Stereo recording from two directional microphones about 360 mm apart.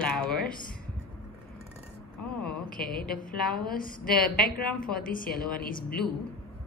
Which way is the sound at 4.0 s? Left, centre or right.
Centre.